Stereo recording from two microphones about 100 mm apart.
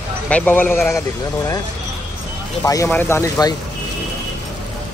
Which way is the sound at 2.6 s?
30° left (ahead or behind).